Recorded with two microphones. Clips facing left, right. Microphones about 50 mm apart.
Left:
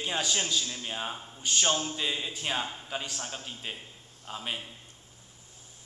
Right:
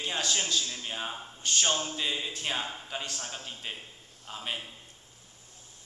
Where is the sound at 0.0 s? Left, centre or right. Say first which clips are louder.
Left 1 dB; centre.